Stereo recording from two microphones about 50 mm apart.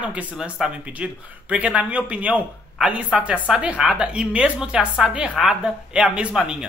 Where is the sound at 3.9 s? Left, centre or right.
Right.